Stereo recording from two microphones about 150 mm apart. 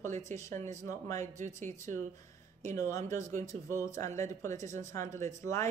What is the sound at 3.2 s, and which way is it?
Speech, 55° right (ahead or behind).